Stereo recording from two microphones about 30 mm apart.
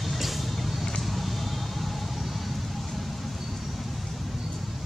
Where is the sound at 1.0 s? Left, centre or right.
Centre.